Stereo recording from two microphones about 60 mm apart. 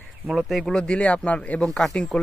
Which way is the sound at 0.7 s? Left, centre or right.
Centre.